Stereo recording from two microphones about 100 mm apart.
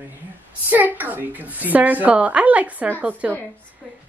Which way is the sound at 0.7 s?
15° right (ahead or behind).